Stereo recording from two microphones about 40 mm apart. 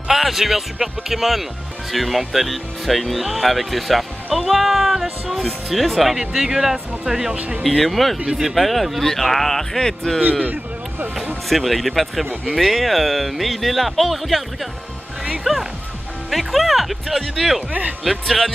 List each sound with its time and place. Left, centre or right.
0.1 s speech: centre
6.1 s speech: centre
7.3 s speech: right
7.8 s speech: centre
8.3 s speech: centre
8.5 s speech: centre
10.4 s a sound: right
11.4 s speech: centre